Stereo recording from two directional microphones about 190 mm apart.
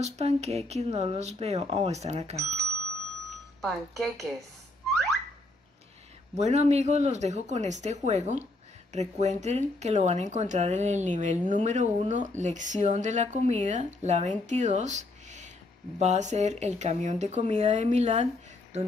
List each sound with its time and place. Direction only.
0.0 s speech: 35° right (ahead or behind)
3.6 s speech: centre (ahead or behind)
6.3 s speech: 35° right (ahead or behind)